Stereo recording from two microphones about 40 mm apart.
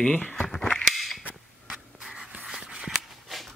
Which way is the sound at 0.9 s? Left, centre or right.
Centre.